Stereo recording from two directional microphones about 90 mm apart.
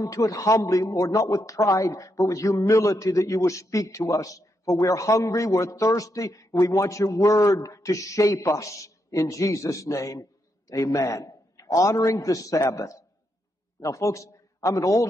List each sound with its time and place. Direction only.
0.0 s a man's voice: 40° left (ahead or behind)